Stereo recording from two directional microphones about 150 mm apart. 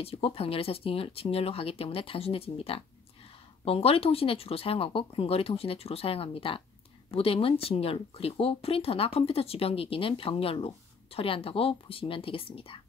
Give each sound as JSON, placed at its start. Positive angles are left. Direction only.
{"t": 0.0, "sound": "speech", "side_deg": 40}